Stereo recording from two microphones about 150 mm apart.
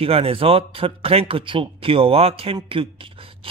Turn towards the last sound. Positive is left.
turn(degrees=-35)  # may be behind; listen again after turning